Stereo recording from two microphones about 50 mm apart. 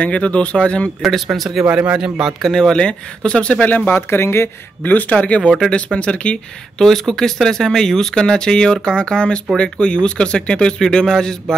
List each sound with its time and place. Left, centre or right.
0.0 s speech: left
1.0 s speech: centre
1.7 s speech: right
2.0 s speech: centre
2.4 s speech: centre
3.6 s speech: left
4.1 s speech: left
4.8 s speech: left
5.1 s speech: left
6.8 s speech: centre